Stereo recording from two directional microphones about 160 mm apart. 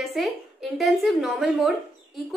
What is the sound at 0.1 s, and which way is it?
A woman's voice, centre (ahead or behind).